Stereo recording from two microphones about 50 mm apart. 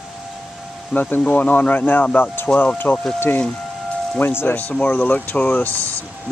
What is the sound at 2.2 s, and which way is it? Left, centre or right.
Speech, left.